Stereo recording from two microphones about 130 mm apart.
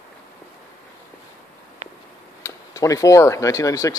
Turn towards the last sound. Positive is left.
turn(degrees=25)  # may be behind; listen again after turning